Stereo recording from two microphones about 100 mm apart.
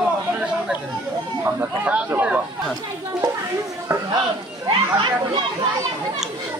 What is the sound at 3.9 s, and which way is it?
Speech, 30° right (ahead or behind).